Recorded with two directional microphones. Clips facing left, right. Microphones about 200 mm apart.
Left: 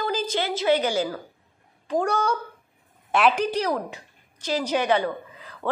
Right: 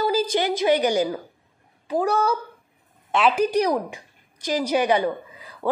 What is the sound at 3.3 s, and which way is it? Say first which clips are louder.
A woman's voice: right 4 dB; 10° right (ahead or behind).